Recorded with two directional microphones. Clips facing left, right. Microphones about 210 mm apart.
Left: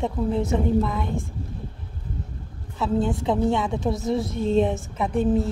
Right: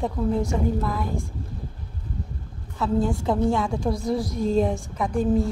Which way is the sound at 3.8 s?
10° left (ahead or behind).